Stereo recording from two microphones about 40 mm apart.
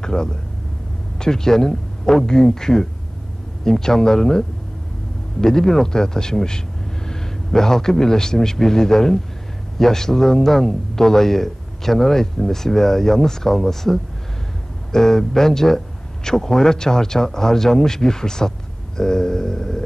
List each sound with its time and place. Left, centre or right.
0.0 s a man's voice: centre